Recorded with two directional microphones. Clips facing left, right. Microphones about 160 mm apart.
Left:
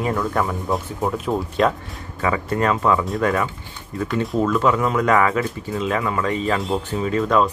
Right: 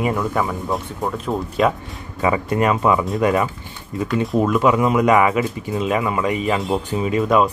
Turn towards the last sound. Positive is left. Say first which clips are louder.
# right 2 dB
turn(degrees=-15)  # may be behind; listen again after turning